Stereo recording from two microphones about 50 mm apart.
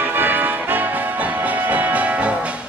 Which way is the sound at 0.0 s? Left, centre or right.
Right.